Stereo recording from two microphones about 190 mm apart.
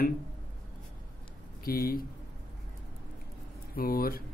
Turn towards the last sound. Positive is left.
turn(degrees=50)  # may be behind; listen again after turning